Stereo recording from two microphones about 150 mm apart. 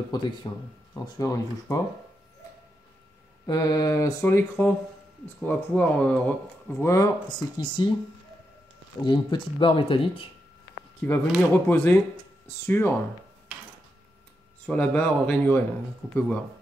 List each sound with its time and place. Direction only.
0.1 s speech: 30° left (ahead or behind)
3.4 s speech: 25° left (ahead or behind); by 6.3 s 10° left (ahead or behind)
6.8 s speech: 20° left (ahead or behind)
7.5 s speech: 35° left (ahead or behind)
9.0 s speech: 30° left (ahead or behind)
11.1 s speech: 15° left (ahead or behind)
14.7 s speech: 10° left (ahead or behind)